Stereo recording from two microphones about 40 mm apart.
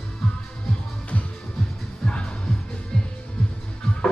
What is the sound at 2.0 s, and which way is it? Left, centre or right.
Music, left.